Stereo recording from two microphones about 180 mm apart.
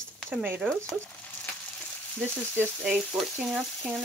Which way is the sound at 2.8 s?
Centre (ahead or behind).